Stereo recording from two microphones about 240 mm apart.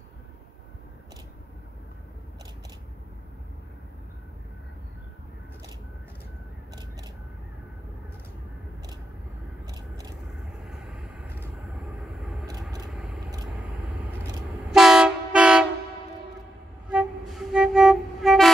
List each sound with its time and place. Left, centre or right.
9.7 s a sound: centre
14.7 s train: centre
16.9 s music: centre